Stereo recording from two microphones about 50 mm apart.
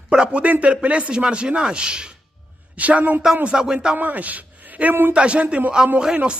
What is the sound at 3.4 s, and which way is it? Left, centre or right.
Speech, centre.